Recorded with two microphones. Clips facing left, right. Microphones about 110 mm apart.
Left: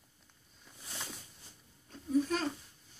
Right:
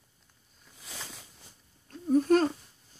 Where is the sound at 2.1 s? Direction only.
50° right (ahead or behind).